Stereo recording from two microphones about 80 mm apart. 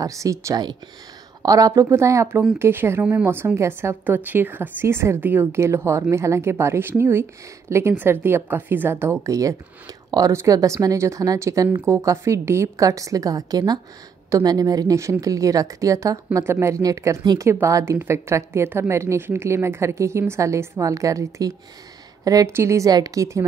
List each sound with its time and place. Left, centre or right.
0.0 s a woman's voice: right
4.0 s a woman's voice: right
9.2 s a woman's voice: right
15.0 s a woman's voice: right
16.4 s a woman's voice: right
22.5 s a woman's voice: right
22.8 s a woman's voice: right